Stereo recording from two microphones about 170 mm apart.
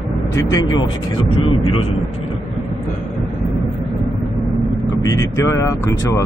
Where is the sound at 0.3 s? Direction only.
20° left (ahead or behind).